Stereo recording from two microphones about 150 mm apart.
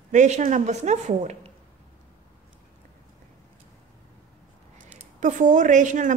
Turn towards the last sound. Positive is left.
turn(degrees=-55)  # may be behind; listen again after turning